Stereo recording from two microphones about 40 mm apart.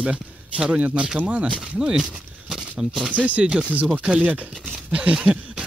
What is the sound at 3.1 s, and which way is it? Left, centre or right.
Speech, right.